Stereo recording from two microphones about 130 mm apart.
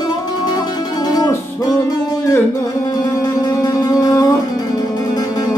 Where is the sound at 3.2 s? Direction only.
30° left (ahead or behind).